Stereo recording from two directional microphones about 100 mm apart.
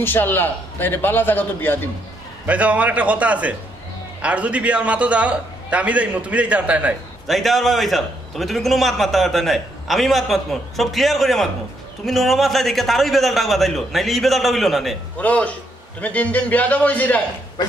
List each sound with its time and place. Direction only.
0.0 s a man's voice: 20° left (ahead or behind)
2.4 s a man's voice: 15° right (ahead or behind)
7.2 s a man's voice: centre (ahead or behind)
15.1 s a man's voice: 15° left (ahead or behind)